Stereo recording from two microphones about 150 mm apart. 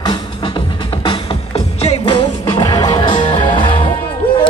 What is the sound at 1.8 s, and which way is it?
Music, 40° left (ahead or behind).